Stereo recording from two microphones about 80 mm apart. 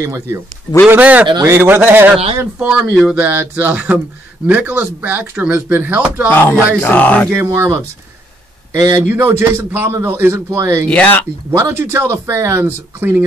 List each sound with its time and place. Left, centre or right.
0.0 s speech: right
0.8 s speech: centre
2.6 s speech: centre
3.2 s speech: right
6.2 s speech: left
7.2 s speech: right
8.7 s speech: right
9.0 s speech: right
10.9 s speech: centre
11.5 s speech: right